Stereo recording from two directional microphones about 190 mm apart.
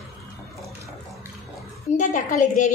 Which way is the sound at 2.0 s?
40° left (ahead or behind).